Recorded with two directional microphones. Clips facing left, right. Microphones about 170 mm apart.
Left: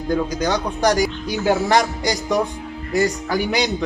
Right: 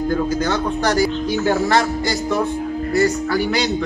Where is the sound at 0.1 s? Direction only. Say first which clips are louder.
Left 3 dB; 15° left (ahead or behind).